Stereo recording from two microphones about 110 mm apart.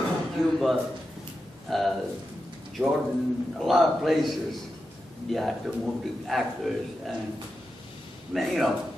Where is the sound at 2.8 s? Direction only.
20° right (ahead or behind).